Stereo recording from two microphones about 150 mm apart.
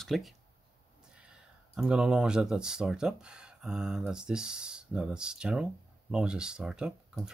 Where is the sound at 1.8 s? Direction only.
5° right (ahead or behind).